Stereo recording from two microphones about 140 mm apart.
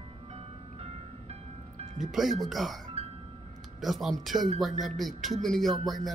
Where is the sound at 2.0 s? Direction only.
5° right (ahead or behind).